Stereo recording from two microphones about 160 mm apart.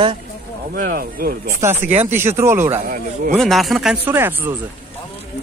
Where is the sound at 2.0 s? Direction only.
15° right (ahead or behind).